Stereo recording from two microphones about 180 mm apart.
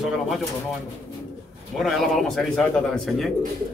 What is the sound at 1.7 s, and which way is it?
A man's voice, centre (ahead or behind).